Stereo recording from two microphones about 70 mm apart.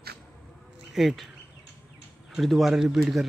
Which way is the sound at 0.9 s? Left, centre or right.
Centre.